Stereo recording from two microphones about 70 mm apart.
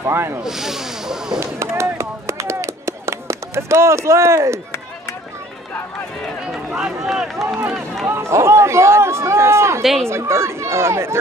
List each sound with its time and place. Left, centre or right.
0.0 s speech: right
0.4 s speech: centre
1.4 s a sound: right
6.8 s speech: centre
8.1 s speech: right